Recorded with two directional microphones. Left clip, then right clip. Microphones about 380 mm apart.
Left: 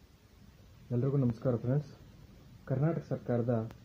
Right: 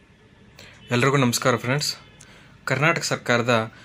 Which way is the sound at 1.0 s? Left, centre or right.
Centre.